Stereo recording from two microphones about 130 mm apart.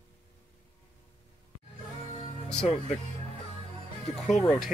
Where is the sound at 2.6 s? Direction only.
Centre (ahead or behind).